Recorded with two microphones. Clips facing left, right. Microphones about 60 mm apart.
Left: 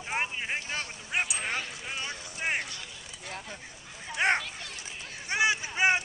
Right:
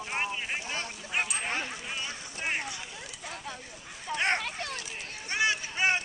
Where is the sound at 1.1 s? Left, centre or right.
Centre.